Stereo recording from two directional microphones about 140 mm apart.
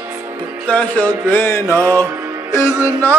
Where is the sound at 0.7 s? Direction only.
10° left (ahead or behind).